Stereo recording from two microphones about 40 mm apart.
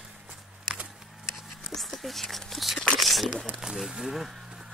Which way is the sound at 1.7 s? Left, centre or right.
Centre.